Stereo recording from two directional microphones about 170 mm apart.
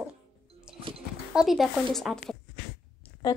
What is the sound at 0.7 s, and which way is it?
Music, 5° right (ahead or behind).